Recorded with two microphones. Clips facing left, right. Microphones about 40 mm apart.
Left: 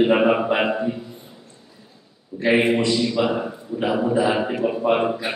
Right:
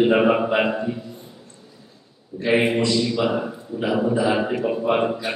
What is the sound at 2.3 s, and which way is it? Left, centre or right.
A man's voice, centre.